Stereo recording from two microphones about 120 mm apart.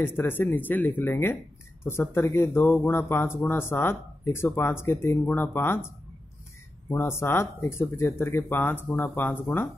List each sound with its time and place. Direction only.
0.0 s speech: 20° left (ahead or behind)
6.9 s speech: 20° left (ahead or behind)